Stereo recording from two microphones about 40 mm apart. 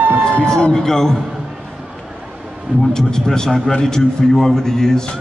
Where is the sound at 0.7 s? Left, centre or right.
Centre.